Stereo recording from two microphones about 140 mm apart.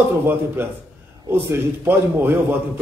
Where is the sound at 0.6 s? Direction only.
15° right (ahead or behind).